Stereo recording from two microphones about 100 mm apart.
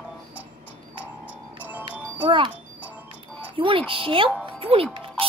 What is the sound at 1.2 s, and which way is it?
Music, 15° right (ahead or behind).